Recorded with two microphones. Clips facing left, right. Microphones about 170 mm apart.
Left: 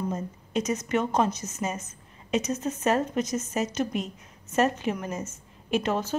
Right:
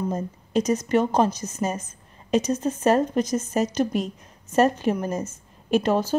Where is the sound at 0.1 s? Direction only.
35° right (ahead or behind).